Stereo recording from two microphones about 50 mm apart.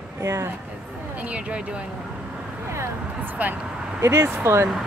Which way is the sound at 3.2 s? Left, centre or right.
Right.